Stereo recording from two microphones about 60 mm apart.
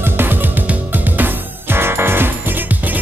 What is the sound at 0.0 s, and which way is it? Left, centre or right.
Music, right.